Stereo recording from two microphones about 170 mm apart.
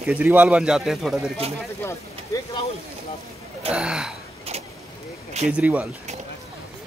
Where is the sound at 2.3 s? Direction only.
20° left (ahead or behind).